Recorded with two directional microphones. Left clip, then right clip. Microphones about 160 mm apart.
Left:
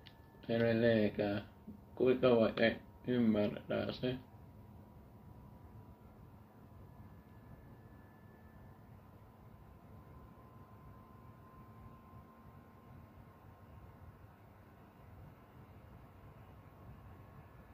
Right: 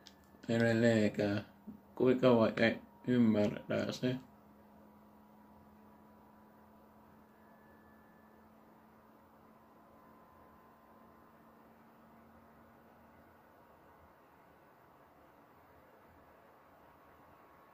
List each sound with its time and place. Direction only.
0.5 s speech: 25° right (ahead or behind)